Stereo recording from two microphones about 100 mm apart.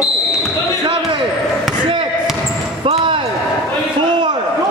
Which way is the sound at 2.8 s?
65° right (ahead or behind).